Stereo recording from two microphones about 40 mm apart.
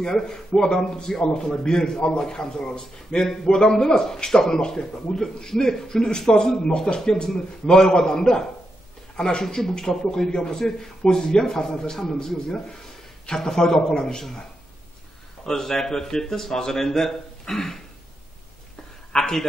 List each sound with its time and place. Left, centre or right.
0.0 s a man's voice: centre
15.4 s a man's voice: centre
19.1 s a sound: centre